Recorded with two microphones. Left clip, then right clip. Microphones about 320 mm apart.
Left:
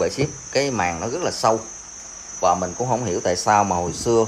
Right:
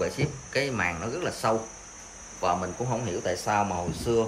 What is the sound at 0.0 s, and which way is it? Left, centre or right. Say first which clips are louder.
Speech: left 7 dB; centre.